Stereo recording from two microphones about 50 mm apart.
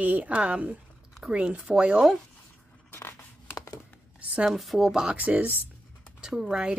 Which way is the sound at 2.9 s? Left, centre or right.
Left.